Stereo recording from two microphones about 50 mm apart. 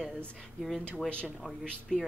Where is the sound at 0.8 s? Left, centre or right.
Left.